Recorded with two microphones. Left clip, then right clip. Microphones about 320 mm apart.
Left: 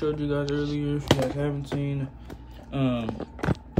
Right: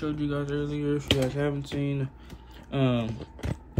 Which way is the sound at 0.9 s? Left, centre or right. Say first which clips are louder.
Left 2 dB; right.